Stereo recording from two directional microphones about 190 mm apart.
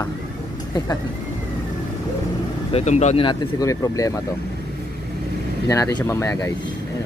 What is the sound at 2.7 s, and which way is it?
Speech, 35° left (ahead or behind).